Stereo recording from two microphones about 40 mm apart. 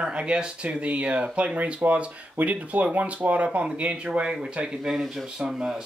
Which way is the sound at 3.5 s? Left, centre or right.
Right.